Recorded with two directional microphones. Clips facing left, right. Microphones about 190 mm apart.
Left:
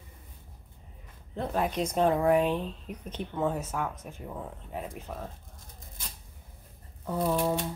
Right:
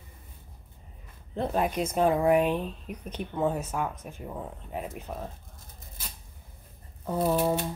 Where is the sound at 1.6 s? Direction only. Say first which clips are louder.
Even; 10° right (ahead or behind).